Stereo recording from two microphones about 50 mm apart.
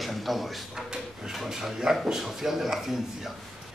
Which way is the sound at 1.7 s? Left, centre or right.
Centre.